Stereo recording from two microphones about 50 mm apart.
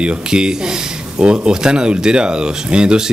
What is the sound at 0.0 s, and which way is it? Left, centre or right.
Speech, centre.